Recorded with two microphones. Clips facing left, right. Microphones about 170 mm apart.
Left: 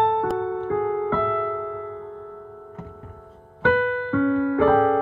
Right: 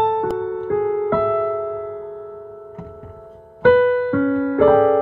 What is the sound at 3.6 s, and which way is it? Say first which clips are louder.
Electric piano: right 8 dB; 45° right (ahead or behind).